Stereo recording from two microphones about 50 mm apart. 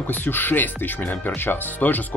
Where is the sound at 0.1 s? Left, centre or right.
Left.